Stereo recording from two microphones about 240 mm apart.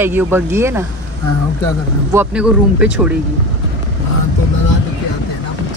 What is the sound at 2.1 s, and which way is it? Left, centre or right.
Speech, centre.